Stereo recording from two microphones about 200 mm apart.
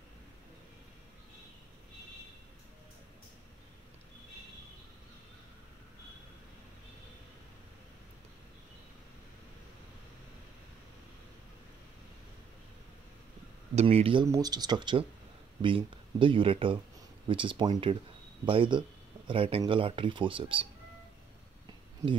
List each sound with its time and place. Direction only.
13.7 s speech: 30° right (ahead or behind)